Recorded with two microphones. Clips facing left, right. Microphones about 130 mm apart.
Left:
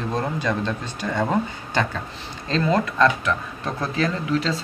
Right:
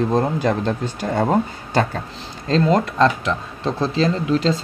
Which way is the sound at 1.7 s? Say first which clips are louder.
Right 4 dB; 40° right (ahead or behind).